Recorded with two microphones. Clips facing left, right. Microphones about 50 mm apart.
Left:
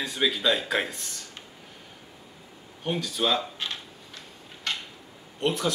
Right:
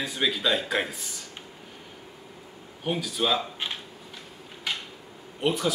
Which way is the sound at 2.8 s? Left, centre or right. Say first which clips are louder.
Even; centre.